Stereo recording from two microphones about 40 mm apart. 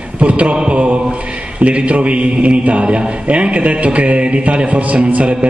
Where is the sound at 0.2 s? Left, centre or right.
Right.